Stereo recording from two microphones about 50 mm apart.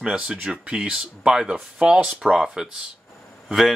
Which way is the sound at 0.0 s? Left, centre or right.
Centre.